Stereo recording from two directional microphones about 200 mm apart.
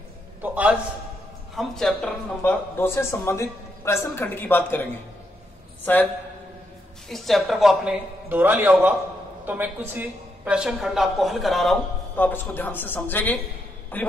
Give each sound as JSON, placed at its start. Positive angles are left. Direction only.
{"t": 0.4, "sound": "a man's voice", "side_deg": -5}
{"t": 5.9, "sound": "speech", "side_deg": 10}
{"t": 7.1, "sound": "a woman's voice", "side_deg": 0}